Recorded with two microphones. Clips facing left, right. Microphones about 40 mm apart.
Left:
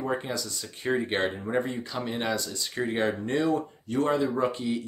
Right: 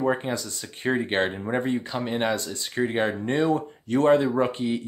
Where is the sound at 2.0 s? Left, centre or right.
Right.